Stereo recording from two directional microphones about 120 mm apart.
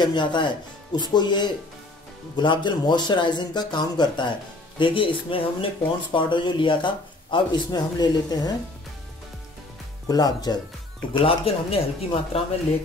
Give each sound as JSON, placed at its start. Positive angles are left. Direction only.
{"t": 0.0, "sound": "speech", "side_deg": 40}
{"t": 10.0, "sound": "speech", "side_deg": 35}
{"t": 11.2, "sound": "speech", "side_deg": 55}